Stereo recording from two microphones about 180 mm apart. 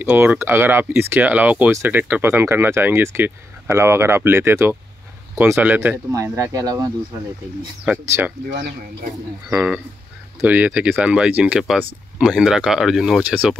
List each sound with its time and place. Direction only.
0.0 s speech: 10° right (ahead or behind)
7.8 s speech: 10° right (ahead or behind)
8.5 s speech: 50° right (ahead or behind)
9.5 s speech: 5° right (ahead or behind)